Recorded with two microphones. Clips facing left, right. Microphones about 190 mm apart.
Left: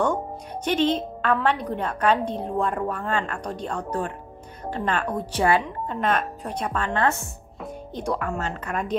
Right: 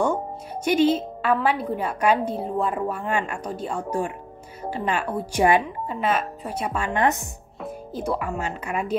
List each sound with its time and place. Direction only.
0.7 s a woman's voice: 10° right (ahead or behind)
7.6 s speech: 5° right (ahead or behind)